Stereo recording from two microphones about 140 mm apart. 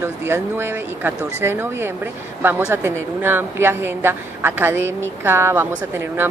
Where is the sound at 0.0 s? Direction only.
15° right (ahead or behind).